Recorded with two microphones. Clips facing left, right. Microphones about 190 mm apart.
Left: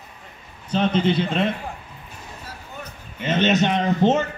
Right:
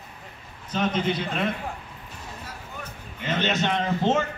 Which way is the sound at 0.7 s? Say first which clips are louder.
Left 5 dB; 30° left (ahead or behind).